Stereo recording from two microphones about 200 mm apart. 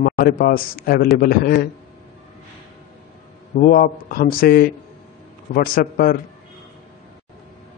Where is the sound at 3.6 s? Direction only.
45° left (ahead or behind).